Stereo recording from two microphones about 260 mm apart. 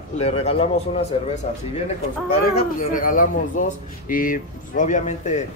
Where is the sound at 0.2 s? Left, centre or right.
Left.